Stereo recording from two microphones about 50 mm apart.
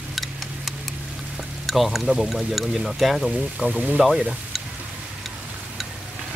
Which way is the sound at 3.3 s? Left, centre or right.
Centre.